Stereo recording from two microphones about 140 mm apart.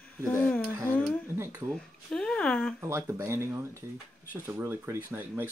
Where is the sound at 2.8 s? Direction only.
15° right (ahead or behind).